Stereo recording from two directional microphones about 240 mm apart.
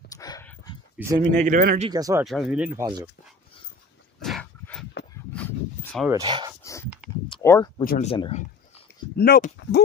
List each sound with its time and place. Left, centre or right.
0.1 s dog: centre
0.9 s speech: centre
1.4 s speech: right
1.9 s speech: centre
2.2 s speech: centre
4.2 s dog: centre
6.0 s speech: centre
6.6 s dog: centre
7.4 s speech: centre
7.8 s speech: left
8.1 s speech: left
9.1 s speech: left